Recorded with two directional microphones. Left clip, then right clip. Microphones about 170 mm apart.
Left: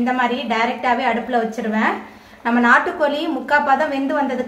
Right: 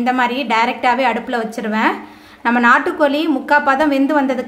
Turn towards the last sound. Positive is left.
turn(degrees=-50)  # may be behind; listen again after turning